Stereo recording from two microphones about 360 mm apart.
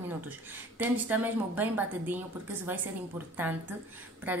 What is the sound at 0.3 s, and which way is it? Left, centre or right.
A woman's voice, centre.